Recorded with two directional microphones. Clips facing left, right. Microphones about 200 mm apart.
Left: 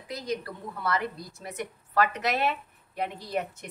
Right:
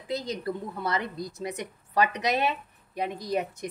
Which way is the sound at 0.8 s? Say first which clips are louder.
Left 1 dB; 20° right (ahead or behind).